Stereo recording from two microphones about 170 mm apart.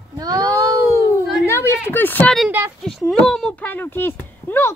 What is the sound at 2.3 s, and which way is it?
Speech, 5° right (ahead or behind).